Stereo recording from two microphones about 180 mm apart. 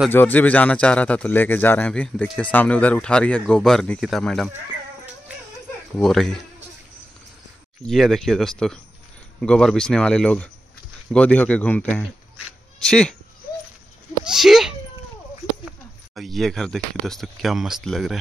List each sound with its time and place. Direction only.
0.1 s a man's voice: 10° left (ahead or behind)
6.0 s speech: centre (ahead or behind)
7.8 s a man's voice: centre (ahead or behind)
14.2 s speech: centre (ahead or behind)
16.2 s speech: centre (ahead or behind)